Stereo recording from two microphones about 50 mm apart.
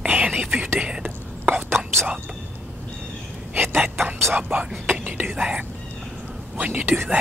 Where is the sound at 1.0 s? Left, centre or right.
Right.